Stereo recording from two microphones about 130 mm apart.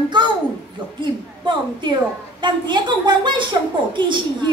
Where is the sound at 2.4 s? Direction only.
35° right (ahead or behind).